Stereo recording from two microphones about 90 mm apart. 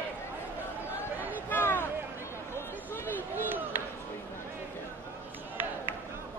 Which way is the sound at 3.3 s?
20° right (ahead or behind).